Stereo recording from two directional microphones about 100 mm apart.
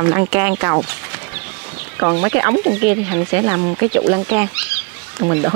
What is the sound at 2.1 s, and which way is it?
Speech, 25° right (ahead or behind).